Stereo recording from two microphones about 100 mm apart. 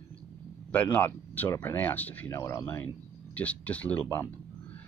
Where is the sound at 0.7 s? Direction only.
15° left (ahead or behind).